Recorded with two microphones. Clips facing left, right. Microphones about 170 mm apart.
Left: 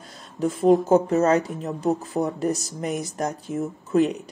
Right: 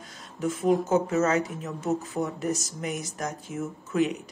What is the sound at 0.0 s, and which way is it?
Speech, 35° left (ahead or behind).